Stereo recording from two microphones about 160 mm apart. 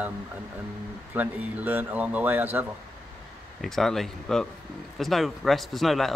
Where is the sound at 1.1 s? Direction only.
10° right (ahead or behind).